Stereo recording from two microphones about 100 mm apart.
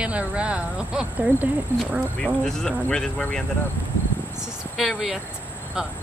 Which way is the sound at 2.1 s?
5° left (ahead or behind).